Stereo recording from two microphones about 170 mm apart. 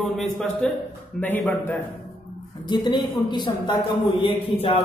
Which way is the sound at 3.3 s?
25° left (ahead or behind).